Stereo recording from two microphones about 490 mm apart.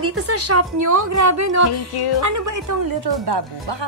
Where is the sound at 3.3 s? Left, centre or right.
Right.